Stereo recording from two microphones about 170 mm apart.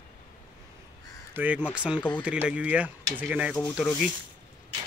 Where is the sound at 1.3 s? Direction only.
10° right (ahead or behind).